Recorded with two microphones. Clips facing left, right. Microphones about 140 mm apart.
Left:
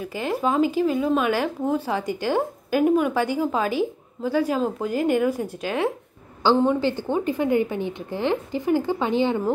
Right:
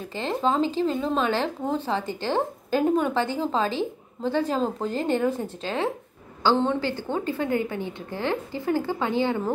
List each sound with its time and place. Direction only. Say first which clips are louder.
0.1 s speech: left 1 dB; 10° left (ahead or behind)